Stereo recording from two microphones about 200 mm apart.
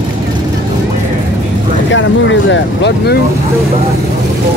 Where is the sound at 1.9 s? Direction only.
65° left (ahead or behind).